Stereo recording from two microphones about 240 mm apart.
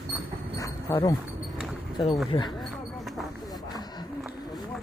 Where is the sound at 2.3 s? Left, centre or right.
Left.